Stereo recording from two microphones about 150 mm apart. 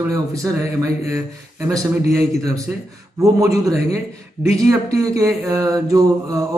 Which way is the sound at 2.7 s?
10° right (ahead or behind).